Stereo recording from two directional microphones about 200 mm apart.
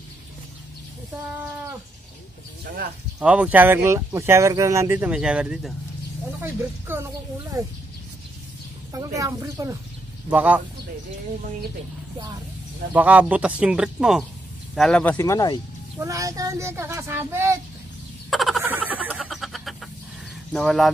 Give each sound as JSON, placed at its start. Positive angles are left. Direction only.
{"t": 3.2, "sound": "speech", "side_deg": -5}
{"t": 8.9, "sound": "speech", "side_deg": -15}
{"t": 12.9, "sound": "speech", "side_deg": -5}
{"t": 16.0, "sound": "speech", "side_deg": -15}
{"t": 18.3, "sound": "frog", "side_deg": 0}
{"t": 18.6, "sound": "a sound", "side_deg": -10}
{"t": 20.5, "sound": "speech", "side_deg": 0}